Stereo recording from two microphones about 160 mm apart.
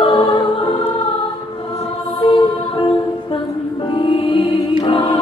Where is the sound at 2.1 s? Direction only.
35° left (ahead or behind).